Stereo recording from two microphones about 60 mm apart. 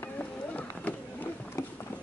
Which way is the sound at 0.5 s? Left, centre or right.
Left.